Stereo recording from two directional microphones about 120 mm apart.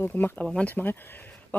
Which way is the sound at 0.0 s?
15° left (ahead or behind).